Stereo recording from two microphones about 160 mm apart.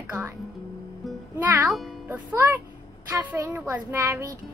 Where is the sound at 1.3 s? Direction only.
15° right (ahead or behind).